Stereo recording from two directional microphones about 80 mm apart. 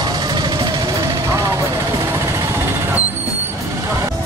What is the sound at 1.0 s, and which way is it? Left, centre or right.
Vehicle, right.